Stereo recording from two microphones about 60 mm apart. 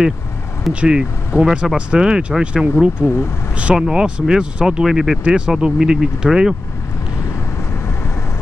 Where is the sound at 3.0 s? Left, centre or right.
Left.